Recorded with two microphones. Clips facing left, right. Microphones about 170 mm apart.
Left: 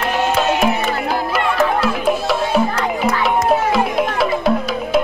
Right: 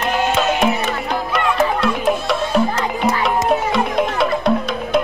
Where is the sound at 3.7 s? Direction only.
Centre (ahead or behind).